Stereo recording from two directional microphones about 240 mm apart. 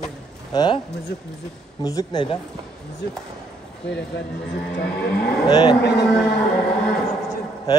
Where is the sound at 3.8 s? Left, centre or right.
Left.